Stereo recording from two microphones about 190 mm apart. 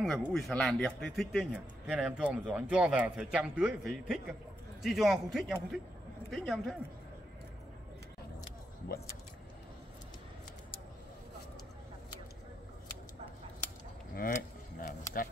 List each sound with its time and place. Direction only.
0.0 s speech: centre (ahead or behind)
14.1 s speech: 50° left (ahead or behind)